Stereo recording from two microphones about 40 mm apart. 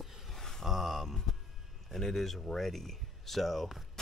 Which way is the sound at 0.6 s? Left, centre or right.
Centre.